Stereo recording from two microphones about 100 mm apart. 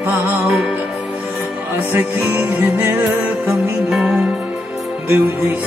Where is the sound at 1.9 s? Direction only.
20° right (ahead or behind).